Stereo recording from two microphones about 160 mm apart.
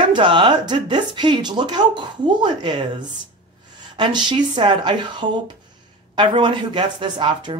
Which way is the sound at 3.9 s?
30° right (ahead or behind).